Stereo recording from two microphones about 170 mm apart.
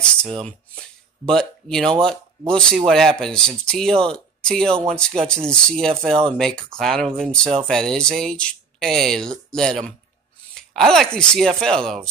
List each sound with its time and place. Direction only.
0.0 s speech: 5° left (ahead or behind)